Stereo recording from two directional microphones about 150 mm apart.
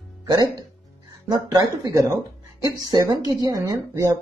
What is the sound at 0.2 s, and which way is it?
Speech, 25° right (ahead or behind).